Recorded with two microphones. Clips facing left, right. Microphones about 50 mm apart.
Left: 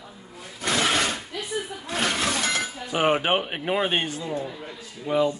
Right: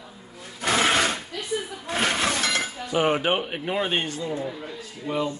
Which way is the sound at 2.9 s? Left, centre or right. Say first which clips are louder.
Even; left.